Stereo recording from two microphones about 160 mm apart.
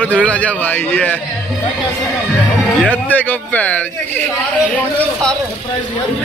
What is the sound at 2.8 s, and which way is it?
A man's voice, 10° left (ahead or behind).